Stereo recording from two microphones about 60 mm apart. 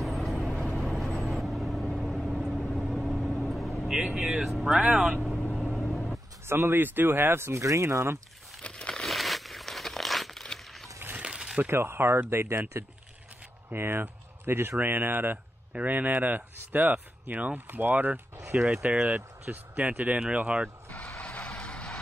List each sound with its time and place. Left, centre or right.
0.0 s vehicle: centre
1.0 s vehicle: centre
1.3 s vehicle: centre
4.0 s speech: right
4.3 s speech: centre
5.6 s vehicle: centre
6.4 s speech: right
7.6 s speech: right
8.6 s crumpling: centre
11.1 s a sound: centre
11.7 s speech: right; by 20.7 s centre
21.2 s music: left